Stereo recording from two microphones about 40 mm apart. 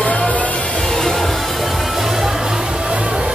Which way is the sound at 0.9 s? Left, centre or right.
Centre.